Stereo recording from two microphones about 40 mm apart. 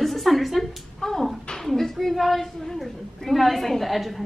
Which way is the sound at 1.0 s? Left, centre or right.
Centre.